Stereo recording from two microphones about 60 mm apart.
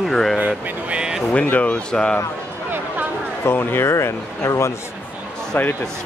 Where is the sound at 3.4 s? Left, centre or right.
Left.